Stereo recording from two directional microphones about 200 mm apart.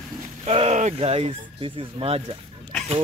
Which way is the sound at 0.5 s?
30° right (ahead or behind).